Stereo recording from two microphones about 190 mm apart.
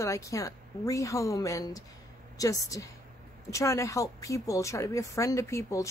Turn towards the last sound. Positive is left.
turn(degrees=15)  # may be behind; listen again after turning